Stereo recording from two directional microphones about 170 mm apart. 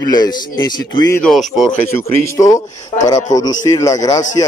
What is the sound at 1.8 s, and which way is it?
A man's voice, 15° left (ahead or behind).